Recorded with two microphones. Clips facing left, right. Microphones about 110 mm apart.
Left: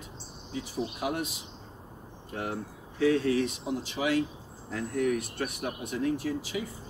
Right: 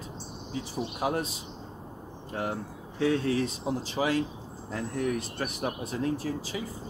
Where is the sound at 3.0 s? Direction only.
35° right (ahead or behind).